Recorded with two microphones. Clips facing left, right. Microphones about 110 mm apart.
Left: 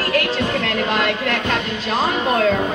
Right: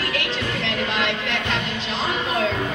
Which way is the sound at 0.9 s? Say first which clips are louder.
Left 4 dB; 45° left (ahead or behind).